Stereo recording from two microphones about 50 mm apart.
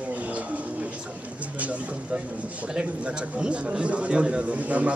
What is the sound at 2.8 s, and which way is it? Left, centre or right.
Speech, right.